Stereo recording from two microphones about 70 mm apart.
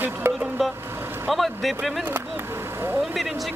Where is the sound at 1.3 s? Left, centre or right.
Centre.